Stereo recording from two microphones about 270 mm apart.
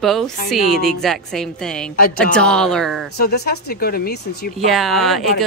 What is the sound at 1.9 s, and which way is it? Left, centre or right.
Speech, left.